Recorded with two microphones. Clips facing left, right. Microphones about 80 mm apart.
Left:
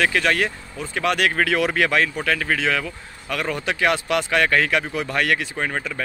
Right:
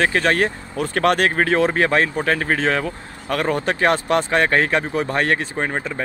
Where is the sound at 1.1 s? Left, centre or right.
Right.